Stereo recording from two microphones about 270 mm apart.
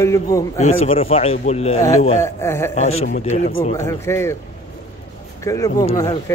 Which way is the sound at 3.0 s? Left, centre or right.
Left.